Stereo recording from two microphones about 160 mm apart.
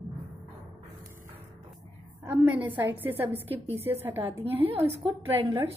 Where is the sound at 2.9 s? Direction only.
10° right (ahead or behind).